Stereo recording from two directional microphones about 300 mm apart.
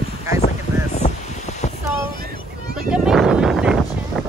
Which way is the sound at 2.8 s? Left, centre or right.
Centre.